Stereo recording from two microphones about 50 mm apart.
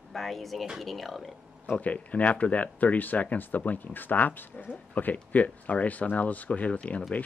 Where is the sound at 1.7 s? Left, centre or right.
Left.